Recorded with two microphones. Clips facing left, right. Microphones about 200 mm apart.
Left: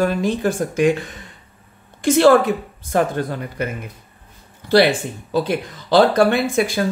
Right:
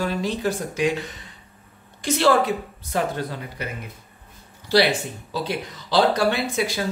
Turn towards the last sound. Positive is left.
turn(degrees=50)  # may be behind; listen again after turning